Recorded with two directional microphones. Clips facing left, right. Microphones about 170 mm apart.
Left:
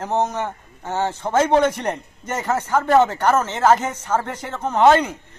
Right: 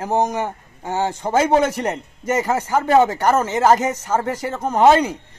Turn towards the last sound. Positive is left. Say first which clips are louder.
# right 1 dB
turn(degrees=-10)  # may be behind; listen again after turning